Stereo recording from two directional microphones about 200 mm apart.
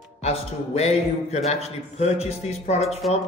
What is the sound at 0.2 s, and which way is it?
A man's voice, 30° left (ahead or behind).